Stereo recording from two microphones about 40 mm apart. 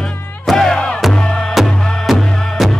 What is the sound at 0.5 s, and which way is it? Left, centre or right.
Music, centre.